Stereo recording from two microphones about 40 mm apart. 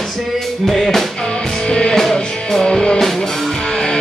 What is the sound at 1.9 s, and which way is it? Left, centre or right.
Music, centre.